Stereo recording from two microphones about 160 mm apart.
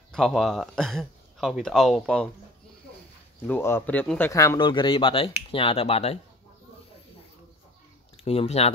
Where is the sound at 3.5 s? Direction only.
15° left (ahead or behind); by 6.2 s 40° left (ahead or behind).